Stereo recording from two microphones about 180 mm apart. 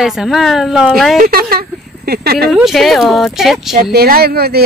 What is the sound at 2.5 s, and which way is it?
A woman's voice, centre (ahead or behind).